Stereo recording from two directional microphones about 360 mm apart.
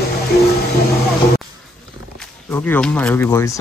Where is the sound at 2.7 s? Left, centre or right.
Centre.